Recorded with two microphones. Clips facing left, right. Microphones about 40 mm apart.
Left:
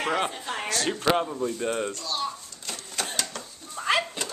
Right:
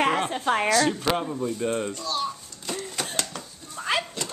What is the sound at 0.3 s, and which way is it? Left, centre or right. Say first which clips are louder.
Speech: right 9 dB; right.